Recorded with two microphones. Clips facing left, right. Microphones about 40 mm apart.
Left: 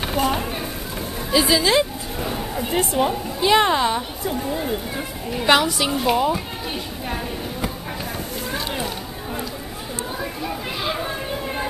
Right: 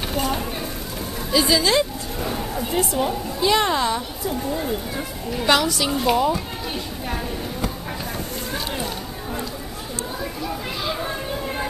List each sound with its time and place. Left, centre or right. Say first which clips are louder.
0.1 s speech: left 3 dB; centre
2.2 s a sound: even; centre
2.7 s a woman's voice: left 2 dB; left; by 6.4 s centre
8.5 s run: left 2 dB; centre
10.4 s children playing: left 1 dB; centre
11.0 s a sound: even; centre